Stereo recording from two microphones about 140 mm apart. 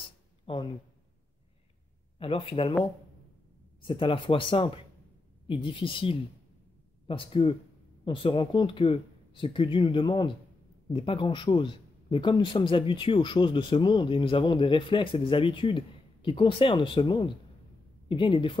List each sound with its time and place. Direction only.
0.5 s a man's voice: 40° left (ahead or behind)
2.1 s a man's voice: 40° left (ahead or behind)
3.8 s a man's voice: 40° left (ahead or behind)